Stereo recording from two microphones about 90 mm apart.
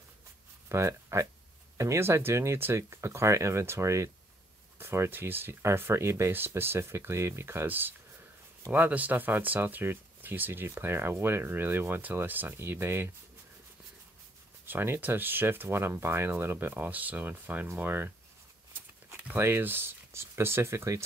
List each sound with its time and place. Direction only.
0.7 s speech: 30° right (ahead or behind)
14.7 s speech: 25° right (ahead or behind)
19.2 s speech: 25° right (ahead or behind)